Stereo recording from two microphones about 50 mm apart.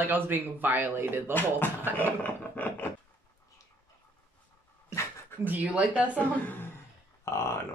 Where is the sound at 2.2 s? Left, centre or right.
Left.